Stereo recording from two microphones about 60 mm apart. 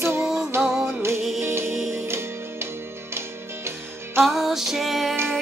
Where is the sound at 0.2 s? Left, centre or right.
Centre.